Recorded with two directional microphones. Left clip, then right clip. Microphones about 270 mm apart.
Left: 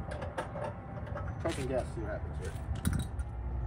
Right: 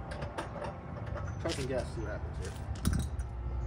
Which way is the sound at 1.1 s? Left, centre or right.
Centre.